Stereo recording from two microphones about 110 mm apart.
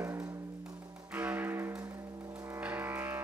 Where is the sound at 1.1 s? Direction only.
15° right (ahead or behind).